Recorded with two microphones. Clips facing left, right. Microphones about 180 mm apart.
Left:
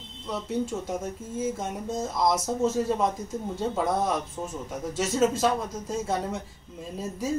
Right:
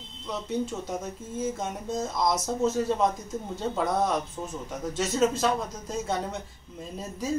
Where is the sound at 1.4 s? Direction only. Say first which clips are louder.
Left 1 dB; 5° left (ahead or behind).